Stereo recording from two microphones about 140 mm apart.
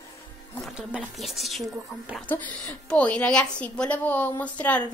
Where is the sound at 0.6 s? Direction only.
5° right (ahead or behind).